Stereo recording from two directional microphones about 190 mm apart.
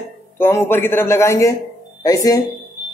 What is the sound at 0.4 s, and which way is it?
A man's voice, 10° left (ahead or behind).